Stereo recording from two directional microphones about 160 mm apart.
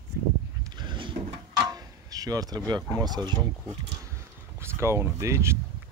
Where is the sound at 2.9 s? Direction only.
25° right (ahead or behind).